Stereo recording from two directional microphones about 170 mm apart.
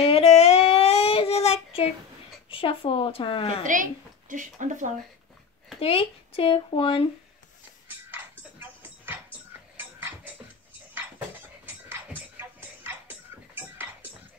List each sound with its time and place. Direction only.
0.0 s child singing: 35° left (ahead or behind)
2.5 s speech: 30° left (ahead or behind)
3.6 s a woman's voice: 50° right (ahead or behind)
5.8 s speech: 35° left (ahead or behind)
7.9 s music: 10° right (ahead or behind)
9.8 s a sound: 10° right (ahead or behind)
11.6 s music: 15° right (ahead or behind)